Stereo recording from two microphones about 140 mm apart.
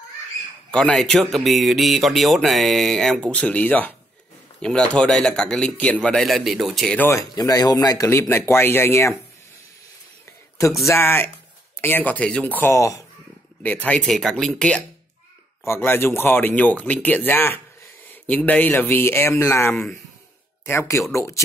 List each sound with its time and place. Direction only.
0.7 s a sound: 5° left (ahead or behind)
7.0 s speech: 20° left (ahead or behind)
10.9 s speech: 15° left (ahead or behind)
13.6 s speech: 10° left (ahead or behind)
15.6 s speech: 15° left (ahead or behind)